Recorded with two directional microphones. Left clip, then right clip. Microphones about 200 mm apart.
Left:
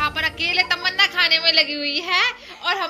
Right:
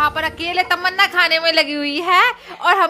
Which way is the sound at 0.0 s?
25° right (ahead or behind).